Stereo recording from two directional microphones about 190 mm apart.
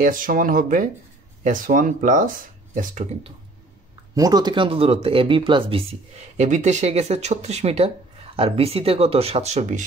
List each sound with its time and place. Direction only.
0.0 s speech: 45° right (ahead or behind)
4.1 s speech: 20° right (ahead or behind); by 9.8 s 35° right (ahead or behind)